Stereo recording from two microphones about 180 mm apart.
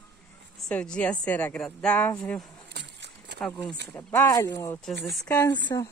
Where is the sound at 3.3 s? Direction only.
5° left (ahead or behind).